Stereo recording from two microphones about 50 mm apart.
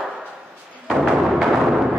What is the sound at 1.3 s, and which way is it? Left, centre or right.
Music, centre.